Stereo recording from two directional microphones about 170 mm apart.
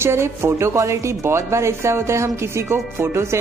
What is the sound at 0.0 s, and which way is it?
Speech, 15° right (ahead or behind).